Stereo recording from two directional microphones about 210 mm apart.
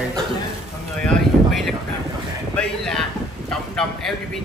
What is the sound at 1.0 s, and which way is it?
A man's voice, centre (ahead or behind).